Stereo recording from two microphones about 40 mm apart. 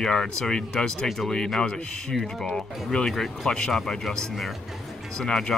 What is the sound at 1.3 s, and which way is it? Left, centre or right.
Speech, centre.